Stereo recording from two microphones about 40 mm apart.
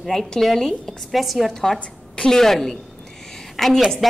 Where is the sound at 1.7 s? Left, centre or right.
Left.